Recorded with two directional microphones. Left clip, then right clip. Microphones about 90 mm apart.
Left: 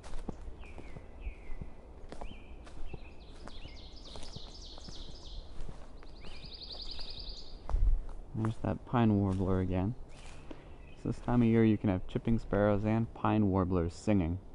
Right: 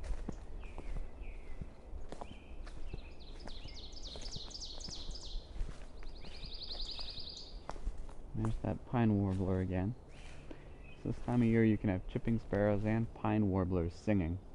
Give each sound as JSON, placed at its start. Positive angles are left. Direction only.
{"t": 0.3, "sound": "horse", "side_deg": -30}
{"t": 8.5, "sound": "speech", "side_deg": 35}